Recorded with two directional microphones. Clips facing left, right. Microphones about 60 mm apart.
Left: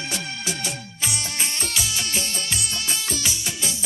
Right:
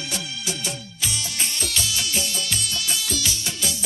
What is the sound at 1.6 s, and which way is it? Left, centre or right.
Music, left.